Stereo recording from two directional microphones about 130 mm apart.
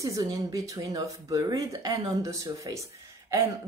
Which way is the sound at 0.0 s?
25° right (ahead or behind).